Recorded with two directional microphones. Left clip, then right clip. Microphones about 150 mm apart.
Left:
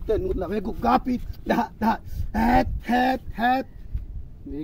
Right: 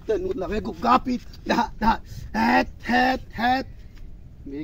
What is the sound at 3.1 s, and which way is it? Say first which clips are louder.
Speech: even; 45° left (ahead or behind).